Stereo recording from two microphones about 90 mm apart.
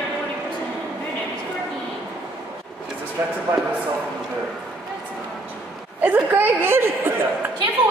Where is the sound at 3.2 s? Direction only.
25° right (ahead or behind).